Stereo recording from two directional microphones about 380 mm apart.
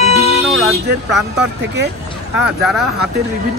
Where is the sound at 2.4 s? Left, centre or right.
Centre.